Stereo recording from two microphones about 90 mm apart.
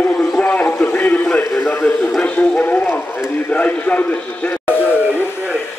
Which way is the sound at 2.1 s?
10° left (ahead or behind).